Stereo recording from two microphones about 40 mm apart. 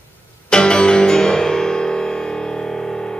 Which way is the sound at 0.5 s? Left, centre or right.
Left.